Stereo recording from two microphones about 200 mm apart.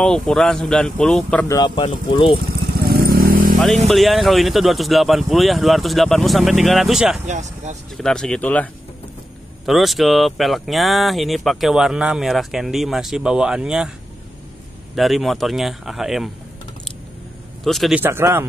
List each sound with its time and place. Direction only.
0.0 s speech: 5° left (ahead or behind)
1.5 s speech: 20° left (ahead or behind)
2.4 s motorcycle: 50° right (ahead or behind)
3.6 s speech: centre (ahead or behind)
7.2 s speech: 35° right (ahead or behind)
8.0 s speech: 5° left (ahead or behind)
9.7 s speech: centre (ahead or behind)
15.0 s speech: centre (ahead or behind)
17.6 s speech: centre (ahead or behind)